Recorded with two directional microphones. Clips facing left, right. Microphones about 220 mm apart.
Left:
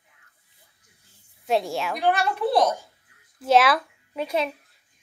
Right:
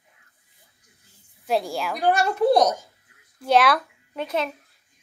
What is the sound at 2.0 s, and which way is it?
Speech, 45° right (ahead or behind).